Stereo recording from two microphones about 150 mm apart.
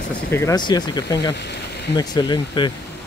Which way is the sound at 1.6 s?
90° left.